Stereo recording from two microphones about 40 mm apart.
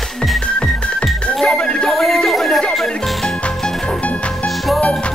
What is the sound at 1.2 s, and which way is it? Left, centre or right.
Music, left.